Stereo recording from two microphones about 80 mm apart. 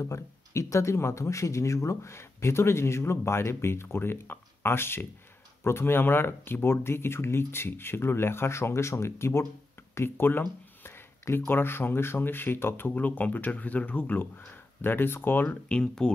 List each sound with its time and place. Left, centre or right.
0.0 s speech: left
15.4 s speech: centre